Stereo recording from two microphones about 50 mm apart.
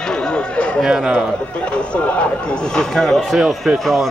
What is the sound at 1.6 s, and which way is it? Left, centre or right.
Speech, left.